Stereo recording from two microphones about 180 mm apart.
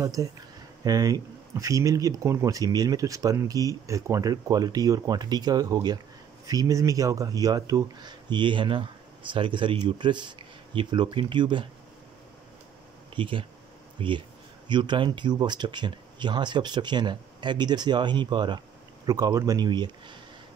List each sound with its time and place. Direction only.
0.0 s speech: 20° right (ahead or behind)
13.1 s speech: 30° right (ahead or behind)